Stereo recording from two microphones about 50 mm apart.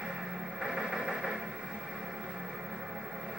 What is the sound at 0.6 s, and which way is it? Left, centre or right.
Train, centre.